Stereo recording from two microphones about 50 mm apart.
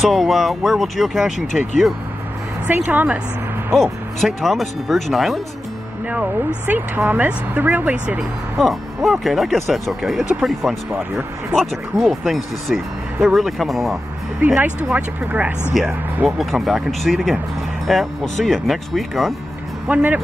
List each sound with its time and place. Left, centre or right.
0.0 s speech: centre
2.6 s speech: right
3.7 s speech: centre
6.7 s speech: right
8.2 s speech: centre
12.0 s speech: centre
14.6 s speech: right
15.7 s speech: centre
19.9 s speech: right